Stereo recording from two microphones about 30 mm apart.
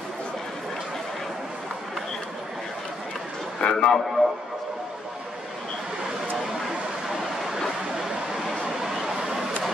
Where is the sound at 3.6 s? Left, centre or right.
Left.